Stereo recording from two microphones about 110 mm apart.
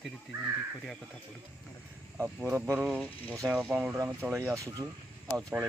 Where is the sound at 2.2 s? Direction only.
Centre (ahead or behind).